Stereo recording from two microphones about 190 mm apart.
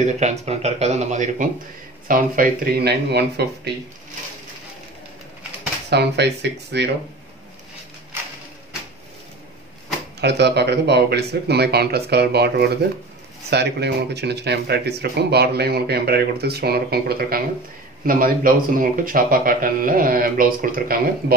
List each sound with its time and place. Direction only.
0.0 s speech: 35° right (ahead or behind); by 3.7 s 60° right (ahead or behind)
5.9 s speech: 60° right (ahead or behind)
10.2 s a man's voice: 60° right (ahead or behind)